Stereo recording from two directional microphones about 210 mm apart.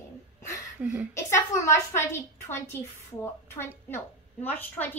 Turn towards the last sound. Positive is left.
turn(degrees=10)  # may be behind; listen again after turning